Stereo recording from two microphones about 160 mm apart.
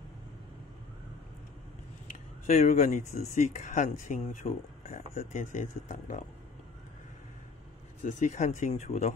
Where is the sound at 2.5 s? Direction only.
50° left (ahead or behind).